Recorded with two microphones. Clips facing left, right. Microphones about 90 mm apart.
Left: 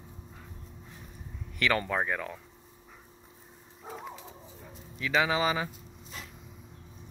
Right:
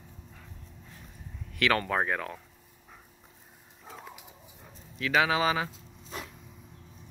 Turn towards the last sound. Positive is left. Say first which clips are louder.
# right 1 dB
turn(degrees=0)  # may be behind; listen again after turning